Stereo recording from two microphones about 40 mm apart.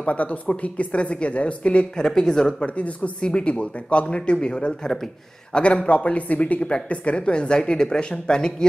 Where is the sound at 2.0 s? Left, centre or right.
Centre.